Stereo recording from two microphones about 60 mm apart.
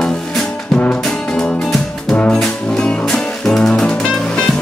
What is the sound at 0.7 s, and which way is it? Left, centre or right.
Music, centre.